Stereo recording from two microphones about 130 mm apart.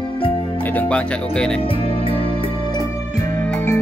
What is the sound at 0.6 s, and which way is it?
Speech, 10° left (ahead or behind).